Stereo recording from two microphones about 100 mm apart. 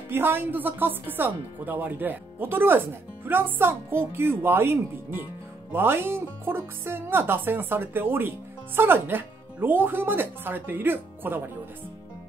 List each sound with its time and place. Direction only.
0.1 s speech: 20° right (ahead or behind)